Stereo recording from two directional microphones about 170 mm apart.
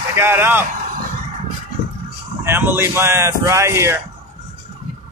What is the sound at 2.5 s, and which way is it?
Speech, 10° right (ahead or behind).